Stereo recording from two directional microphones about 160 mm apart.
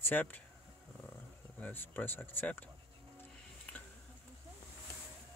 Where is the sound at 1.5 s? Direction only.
10° left (ahead or behind).